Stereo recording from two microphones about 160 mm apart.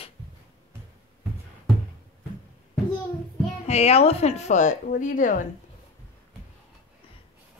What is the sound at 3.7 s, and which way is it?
A woman's voice, 40° left (ahead or behind).